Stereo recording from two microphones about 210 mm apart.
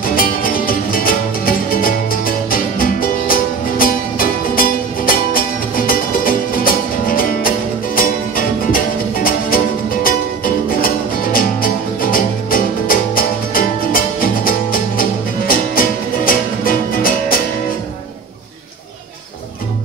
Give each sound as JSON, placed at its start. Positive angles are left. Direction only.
{"t": 0.0, "sound": "music", "side_deg": 40}